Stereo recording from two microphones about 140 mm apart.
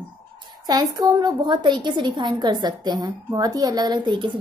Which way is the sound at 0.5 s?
30° right (ahead or behind).